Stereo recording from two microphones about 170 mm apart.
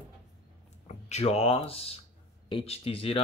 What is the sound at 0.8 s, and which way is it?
Speech, 40° left (ahead or behind).